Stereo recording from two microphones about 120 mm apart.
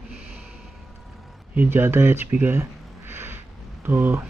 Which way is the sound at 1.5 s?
15° right (ahead or behind).